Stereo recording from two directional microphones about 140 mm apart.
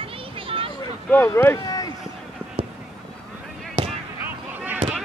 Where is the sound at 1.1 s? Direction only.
15° left (ahead or behind).